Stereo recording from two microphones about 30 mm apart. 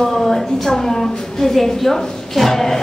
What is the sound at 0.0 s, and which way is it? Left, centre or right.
A woman's voice, centre.